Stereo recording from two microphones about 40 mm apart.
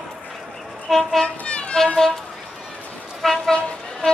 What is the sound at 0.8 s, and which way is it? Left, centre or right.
Speech, centre.